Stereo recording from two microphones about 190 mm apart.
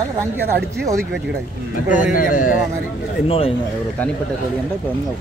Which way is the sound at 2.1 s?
45° left (ahead or behind).